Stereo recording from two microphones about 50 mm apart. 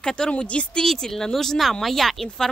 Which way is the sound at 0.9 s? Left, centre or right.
Centre.